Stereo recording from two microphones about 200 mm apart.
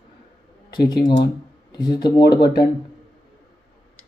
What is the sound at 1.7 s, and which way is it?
Speech, 20° left (ahead or behind).